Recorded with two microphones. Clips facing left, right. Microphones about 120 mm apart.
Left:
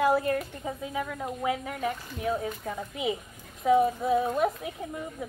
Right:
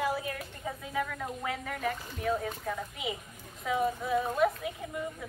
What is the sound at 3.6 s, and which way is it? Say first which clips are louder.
Speech: left 8 dB; 35° left (ahead or behind).